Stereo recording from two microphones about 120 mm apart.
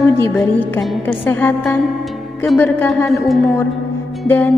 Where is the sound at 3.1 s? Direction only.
Centre (ahead or behind).